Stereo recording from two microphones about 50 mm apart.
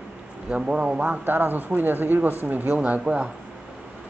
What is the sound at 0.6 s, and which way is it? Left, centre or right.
Speech, centre.